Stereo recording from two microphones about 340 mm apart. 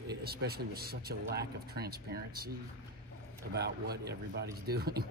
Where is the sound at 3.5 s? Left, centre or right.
Right.